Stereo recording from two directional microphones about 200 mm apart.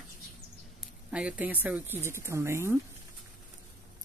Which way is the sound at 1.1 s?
5° right (ahead or behind).